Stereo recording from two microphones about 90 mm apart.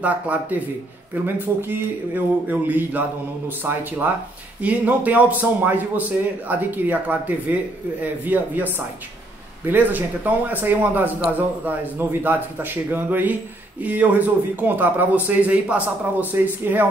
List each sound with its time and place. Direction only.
0.0 s speech: 15° right (ahead or behind)